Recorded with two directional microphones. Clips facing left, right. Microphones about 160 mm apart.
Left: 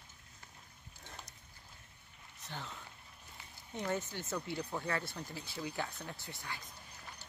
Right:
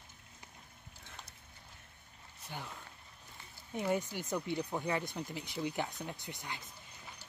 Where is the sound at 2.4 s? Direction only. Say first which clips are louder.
Right 1 dB; 10° right (ahead or behind).